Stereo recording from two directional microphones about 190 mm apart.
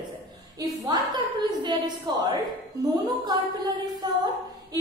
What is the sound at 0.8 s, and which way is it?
A woman's voice, 20° right (ahead or behind).